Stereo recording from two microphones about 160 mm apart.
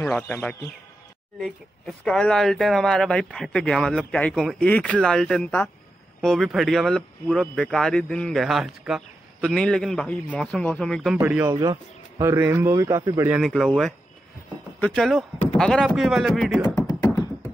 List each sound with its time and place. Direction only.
0.2 s speech: 15° left (ahead or behind)
11.1 s a man's voice: 15° right (ahead or behind)
13.4 s speech: centre (ahead or behind)
16.6 s beatboxing: 20° left (ahead or behind)